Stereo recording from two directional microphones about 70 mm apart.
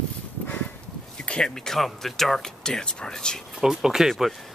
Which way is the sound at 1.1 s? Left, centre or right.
Centre.